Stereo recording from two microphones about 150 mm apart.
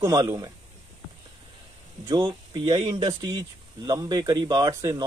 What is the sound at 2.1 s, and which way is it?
Speech, 35° right (ahead or behind).